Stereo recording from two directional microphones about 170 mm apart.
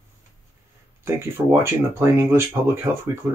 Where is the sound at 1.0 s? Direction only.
15° right (ahead or behind).